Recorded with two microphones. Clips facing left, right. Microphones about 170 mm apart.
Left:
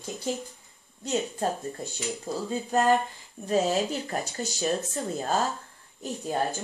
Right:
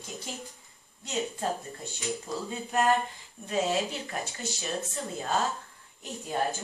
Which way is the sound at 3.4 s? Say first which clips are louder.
Left 4 dB; 35° left (ahead or behind).